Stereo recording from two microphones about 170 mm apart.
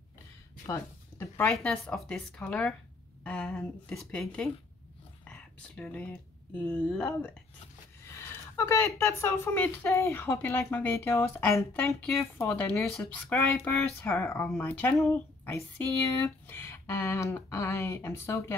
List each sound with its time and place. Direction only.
0.7 s a sound: 15° left (ahead or behind)
1.5 s a woman's voice: 5° left (ahead or behind)
11.9 s a woman's voice: centre (ahead or behind)